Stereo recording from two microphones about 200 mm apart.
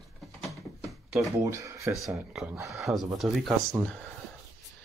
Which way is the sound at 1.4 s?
15° right (ahead or behind).